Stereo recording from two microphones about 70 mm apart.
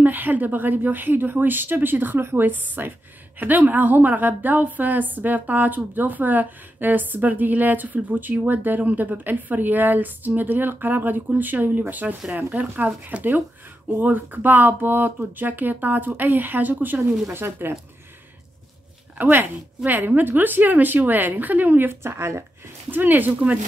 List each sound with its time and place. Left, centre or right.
0.0 s a woman's voice: right
19.2 s a woman's voice: right
22.8 s a woman's voice: right